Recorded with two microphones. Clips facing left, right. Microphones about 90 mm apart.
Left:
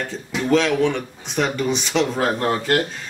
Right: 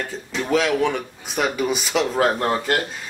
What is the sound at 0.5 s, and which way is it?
A man's voice, 5° right (ahead or behind).